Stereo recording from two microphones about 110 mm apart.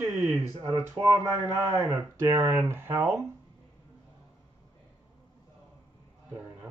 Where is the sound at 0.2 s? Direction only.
30° right (ahead or behind).